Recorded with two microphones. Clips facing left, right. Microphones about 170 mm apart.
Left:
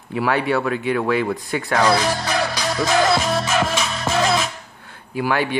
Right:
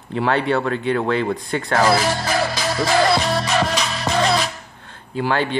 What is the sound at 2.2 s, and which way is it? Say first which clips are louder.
Music: right 1 dB; 5° right (ahead or behind).